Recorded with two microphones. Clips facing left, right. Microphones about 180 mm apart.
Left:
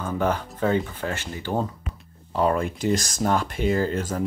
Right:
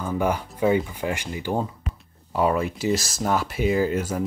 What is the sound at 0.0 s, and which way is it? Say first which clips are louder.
Speech: even; 10° right (ahead or behind).